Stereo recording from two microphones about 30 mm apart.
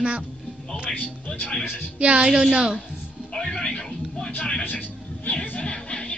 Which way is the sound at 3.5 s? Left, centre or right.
Left.